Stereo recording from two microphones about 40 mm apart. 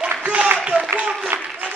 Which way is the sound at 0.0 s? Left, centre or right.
Right.